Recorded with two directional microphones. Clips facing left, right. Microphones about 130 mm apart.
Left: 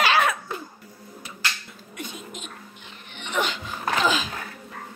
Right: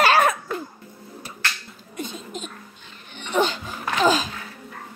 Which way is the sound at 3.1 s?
40° right (ahead or behind).